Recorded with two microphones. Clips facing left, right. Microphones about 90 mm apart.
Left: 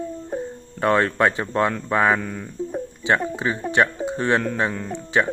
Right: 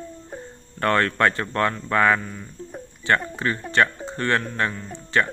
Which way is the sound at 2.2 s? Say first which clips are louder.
Left 5 dB; 60° left (ahead or behind).